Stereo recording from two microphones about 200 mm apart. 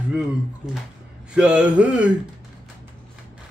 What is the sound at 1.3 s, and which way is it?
Mantra, 5° right (ahead or behind).